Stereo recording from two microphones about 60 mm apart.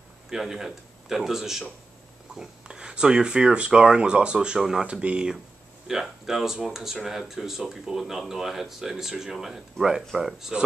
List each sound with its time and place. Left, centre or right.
0.3 s speech: centre